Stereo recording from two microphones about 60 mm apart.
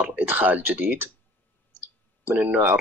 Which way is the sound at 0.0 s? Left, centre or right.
Right.